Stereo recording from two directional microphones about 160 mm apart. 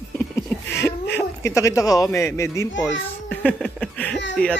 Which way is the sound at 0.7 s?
15° left (ahead or behind).